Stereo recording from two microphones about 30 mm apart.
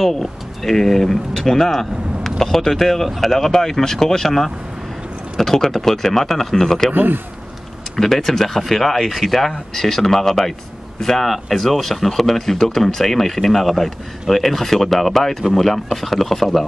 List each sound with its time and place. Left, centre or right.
0.0 s speech: centre
6.9 s a man's voice: right
7.9 s speech: centre